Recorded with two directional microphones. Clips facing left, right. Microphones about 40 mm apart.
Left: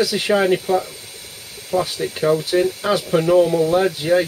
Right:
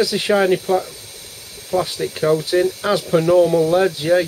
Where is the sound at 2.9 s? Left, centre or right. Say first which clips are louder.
Right 1 dB; centre.